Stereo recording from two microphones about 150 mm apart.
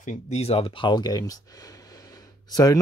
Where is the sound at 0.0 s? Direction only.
55° left (ahead or behind).